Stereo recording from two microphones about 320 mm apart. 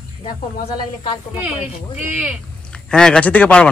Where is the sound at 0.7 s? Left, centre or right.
Centre.